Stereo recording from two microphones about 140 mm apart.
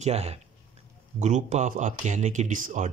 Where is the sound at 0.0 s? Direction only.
50° right (ahead or behind).